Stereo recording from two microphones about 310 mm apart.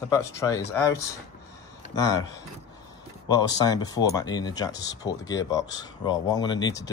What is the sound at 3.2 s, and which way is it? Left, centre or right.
Speech, centre.